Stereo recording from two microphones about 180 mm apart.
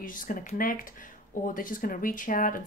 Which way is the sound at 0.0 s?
50° left (ahead or behind).